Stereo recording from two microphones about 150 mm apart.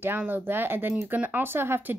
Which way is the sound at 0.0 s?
15° right (ahead or behind).